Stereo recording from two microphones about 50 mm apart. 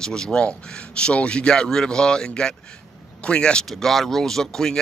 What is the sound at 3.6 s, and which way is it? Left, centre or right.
Speech, centre.